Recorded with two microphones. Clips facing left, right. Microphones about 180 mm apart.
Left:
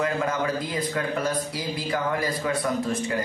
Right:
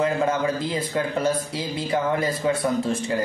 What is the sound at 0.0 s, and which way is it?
Speech, 25° right (ahead or behind).